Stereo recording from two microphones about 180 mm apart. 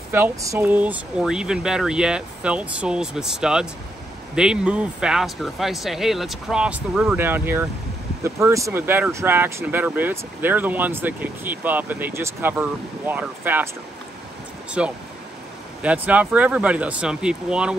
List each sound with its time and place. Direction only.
0.1 s speech: 15° right (ahead or behind)
14.8 s speech: 5° right (ahead or behind)